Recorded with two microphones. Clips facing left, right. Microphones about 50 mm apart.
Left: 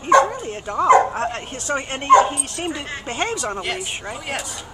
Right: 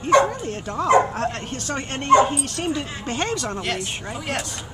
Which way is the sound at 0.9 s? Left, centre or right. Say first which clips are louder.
Left 3 dB; left.